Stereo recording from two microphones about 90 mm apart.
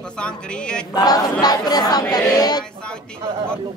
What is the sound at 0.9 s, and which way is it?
Speech, 45° left (ahead or behind).